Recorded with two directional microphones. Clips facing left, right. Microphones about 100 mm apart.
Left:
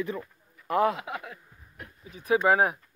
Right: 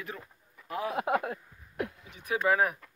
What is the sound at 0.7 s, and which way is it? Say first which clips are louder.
Speech: left 10 dB; 75° left (ahead or behind).